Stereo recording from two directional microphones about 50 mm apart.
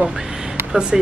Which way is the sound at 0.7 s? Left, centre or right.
Centre.